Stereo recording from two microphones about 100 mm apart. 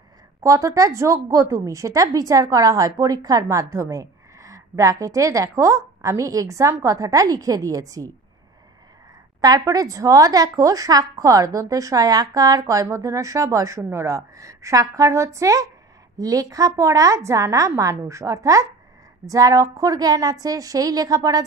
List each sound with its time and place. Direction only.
0.4 s a woman's voice: 30° right (ahead or behind)
9.4 s a woman's voice: 40° right (ahead or behind)